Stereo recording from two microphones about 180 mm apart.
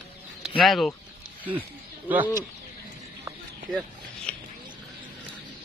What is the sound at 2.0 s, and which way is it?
Speech, 10° right (ahead or behind).